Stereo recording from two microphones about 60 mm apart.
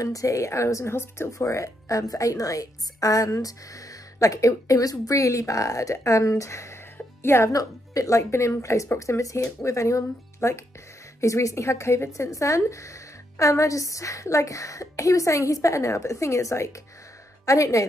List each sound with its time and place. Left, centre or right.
0.0 s a woman's voice: left
3.4 s a woman's voice: left
7.5 s a woman's voice: left